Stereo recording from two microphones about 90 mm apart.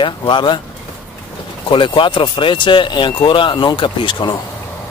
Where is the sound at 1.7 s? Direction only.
70° left (ahead or behind).